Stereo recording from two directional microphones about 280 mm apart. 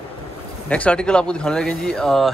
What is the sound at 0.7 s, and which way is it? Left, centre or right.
Speech, centre.